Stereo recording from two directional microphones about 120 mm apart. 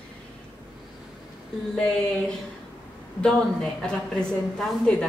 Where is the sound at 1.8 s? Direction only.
5° left (ahead or behind).